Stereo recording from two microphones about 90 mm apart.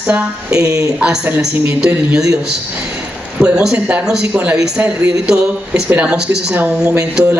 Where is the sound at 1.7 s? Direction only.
10° right (ahead or behind).